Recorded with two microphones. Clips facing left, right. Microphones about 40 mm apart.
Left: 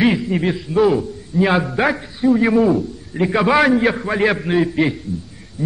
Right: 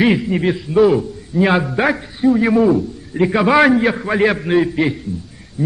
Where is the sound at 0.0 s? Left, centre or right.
Centre.